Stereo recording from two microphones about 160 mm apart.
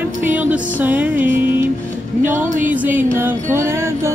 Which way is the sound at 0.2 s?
10° right (ahead or behind).